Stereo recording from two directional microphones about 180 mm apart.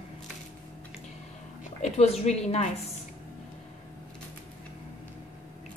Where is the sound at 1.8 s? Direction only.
35° left (ahead or behind).